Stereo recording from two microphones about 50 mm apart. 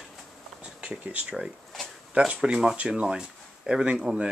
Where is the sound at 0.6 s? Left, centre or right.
Right.